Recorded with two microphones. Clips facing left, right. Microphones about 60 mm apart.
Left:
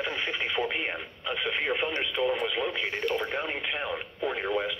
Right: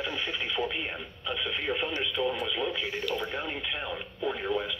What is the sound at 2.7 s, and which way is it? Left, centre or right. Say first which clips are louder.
Speech: left 2 dB; left.